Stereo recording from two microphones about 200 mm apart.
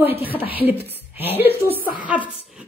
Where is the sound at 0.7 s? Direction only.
10° right (ahead or behind).